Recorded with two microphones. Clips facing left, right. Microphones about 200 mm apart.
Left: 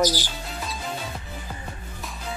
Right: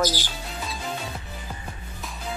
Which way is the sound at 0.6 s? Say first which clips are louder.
Even; centre (ahead or behind).